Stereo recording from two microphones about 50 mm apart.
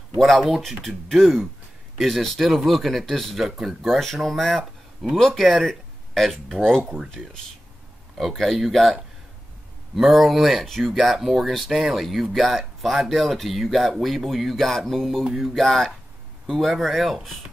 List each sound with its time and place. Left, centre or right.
0.2 s speech: centre
8.2 s speech: centre